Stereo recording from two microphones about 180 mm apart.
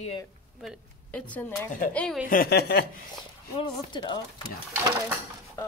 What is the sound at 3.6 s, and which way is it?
Speech, 30° left (ahead or behind).